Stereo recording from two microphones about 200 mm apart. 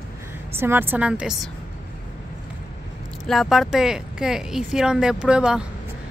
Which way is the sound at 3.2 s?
Centre (ahead or behind).